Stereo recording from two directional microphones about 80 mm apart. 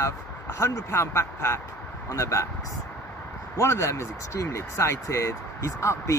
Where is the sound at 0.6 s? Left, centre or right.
Left.